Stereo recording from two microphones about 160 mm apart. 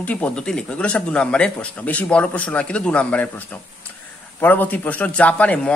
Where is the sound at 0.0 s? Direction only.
10° left (ahead or behind).